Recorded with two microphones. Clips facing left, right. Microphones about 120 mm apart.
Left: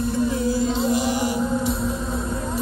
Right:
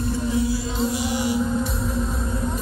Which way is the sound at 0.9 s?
45° left (ahead or behind).